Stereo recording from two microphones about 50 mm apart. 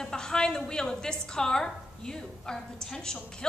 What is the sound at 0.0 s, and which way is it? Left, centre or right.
A woman's voice, centre.